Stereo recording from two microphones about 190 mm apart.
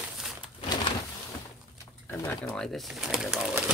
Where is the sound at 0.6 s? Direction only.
25° left (ahead or behind).